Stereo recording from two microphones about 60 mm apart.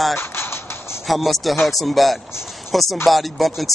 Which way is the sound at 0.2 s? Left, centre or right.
Left.